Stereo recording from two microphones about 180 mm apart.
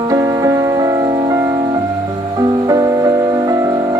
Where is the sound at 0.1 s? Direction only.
20° right (ahead or behind).